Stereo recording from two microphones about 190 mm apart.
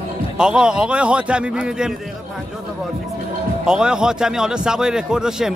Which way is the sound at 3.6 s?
5° right (ahead or behind).